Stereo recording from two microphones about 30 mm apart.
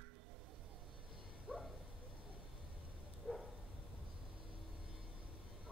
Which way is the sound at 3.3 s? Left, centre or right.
Right.